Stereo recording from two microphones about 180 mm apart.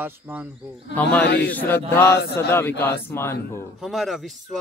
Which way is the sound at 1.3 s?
65° left (ahead or behind).